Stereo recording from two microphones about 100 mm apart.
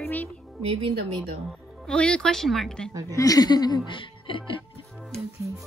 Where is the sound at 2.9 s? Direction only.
35° right (ahead or behind).